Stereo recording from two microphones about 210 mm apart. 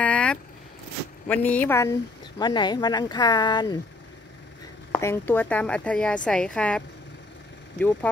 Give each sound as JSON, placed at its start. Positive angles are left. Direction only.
{"t": 0.0, "sound": "vehicle", "side_deg": 5}
{"t": 1.2, "sound": "speech", "side_deg": 5}
{"t": 4.9, "sound": "a woman's voice", "side_deg": 10}